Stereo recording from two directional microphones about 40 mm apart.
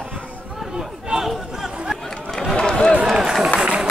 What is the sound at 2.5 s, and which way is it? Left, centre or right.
Run, centre.